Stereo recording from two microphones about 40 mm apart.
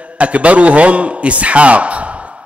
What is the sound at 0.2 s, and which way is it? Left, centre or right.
A man's voice, right.